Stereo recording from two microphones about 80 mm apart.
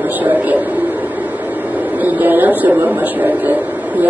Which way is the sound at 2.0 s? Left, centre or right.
Right.